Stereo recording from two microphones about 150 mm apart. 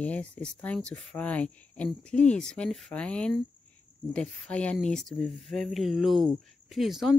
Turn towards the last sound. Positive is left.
turn(degrees=0)  # may be behind; listen again after turning